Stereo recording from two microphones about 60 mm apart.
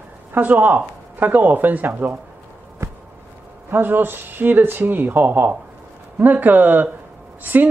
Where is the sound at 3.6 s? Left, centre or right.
Right.